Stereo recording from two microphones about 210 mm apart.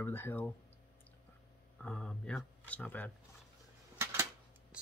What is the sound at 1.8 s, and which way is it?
Speech, 5° left (ahead or behind).